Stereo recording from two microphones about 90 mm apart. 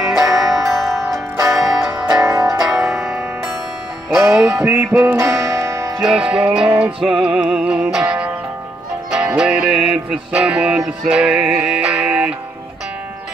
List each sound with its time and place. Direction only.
0.4 s music: 5° right (ahead or behind)
4.2 s music: 35° right (ahead or behind)
6.0 s music: 10° right (ahead or behind)